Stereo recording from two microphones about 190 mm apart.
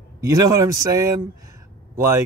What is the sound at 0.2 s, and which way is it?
Speech, 15° right (ahead or behind).